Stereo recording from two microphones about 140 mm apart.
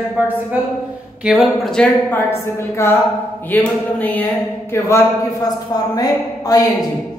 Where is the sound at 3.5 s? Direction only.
10° left (ahead or behind).